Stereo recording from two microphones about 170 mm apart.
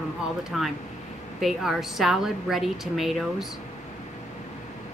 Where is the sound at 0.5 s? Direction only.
Centre (ahead or behind).